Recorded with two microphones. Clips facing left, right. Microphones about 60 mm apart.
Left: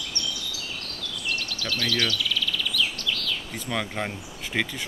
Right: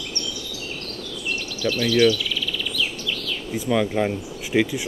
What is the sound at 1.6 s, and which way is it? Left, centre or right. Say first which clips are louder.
Speech: right 11 dB; centre.